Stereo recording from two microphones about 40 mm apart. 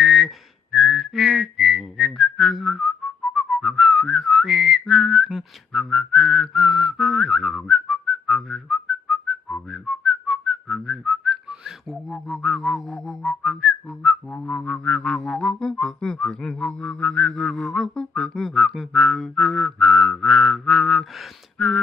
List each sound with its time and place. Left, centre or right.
0.0 s whistling: centre
5.7 s whistling: centre
12.3 s whistling: centre
14.3 s music: left; by 18.3 s centre
18.3 s music: centre
19.1 s mantra: centre
21.6 s a sound: centre